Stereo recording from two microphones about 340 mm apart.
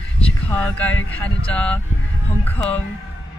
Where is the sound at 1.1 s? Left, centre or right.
Centre.